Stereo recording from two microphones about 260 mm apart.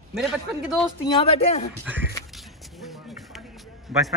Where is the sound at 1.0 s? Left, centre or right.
Centre.